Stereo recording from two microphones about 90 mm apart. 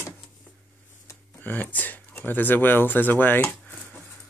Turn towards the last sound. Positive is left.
turn(degrees=20)  # may be behind; listen again after turning